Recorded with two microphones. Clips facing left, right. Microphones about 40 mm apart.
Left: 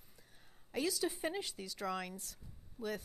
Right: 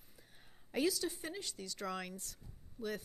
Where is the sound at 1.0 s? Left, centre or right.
Centre.